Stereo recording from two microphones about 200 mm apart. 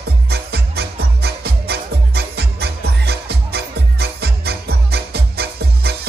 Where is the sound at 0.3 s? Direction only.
55° right (ahead or behind).